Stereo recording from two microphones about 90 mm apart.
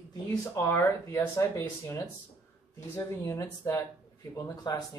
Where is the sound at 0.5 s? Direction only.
30° left (ahead or behind).